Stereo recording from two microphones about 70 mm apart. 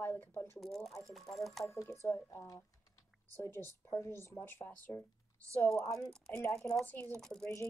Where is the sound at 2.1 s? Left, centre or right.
Left.